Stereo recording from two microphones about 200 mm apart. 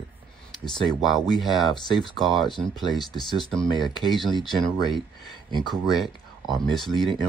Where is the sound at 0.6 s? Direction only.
20° left (ahead or behind).